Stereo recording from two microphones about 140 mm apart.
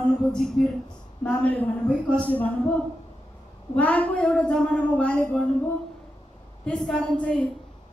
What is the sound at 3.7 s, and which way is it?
A woman's voice, 10° left (ahead or behind).